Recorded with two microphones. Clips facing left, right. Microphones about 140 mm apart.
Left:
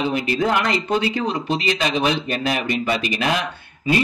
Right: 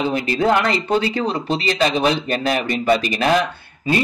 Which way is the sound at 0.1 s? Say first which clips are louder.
Right 3 dB; 35° right (ahead or behind).